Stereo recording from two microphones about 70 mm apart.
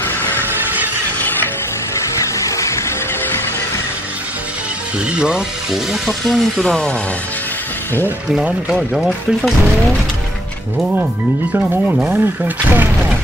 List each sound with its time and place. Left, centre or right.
2.3 s a sound: left
5.1 s speech: centre
6.7 s speech: centre
8.5 s speech: centre
11.9 s speech: right